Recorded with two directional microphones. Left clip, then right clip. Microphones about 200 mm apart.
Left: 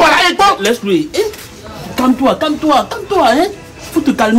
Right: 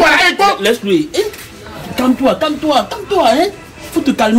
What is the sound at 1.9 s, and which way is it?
Speech, 5° left (ahead or behind).